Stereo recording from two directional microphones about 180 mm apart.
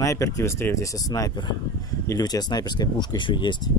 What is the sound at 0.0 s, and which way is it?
Speech, 15° left (ahead or behind).